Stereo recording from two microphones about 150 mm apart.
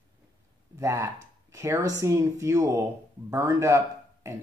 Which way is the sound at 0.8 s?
20° right (ahead or behind).